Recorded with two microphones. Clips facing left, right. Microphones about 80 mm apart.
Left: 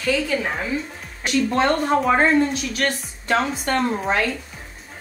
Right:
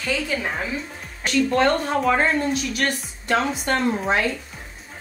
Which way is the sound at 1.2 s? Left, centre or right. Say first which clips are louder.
Even; centre.